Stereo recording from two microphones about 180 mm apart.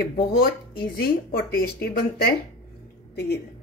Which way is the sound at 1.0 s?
55° left (ahead or behind).